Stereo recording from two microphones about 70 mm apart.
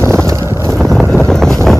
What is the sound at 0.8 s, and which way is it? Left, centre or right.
Wind noise, centre.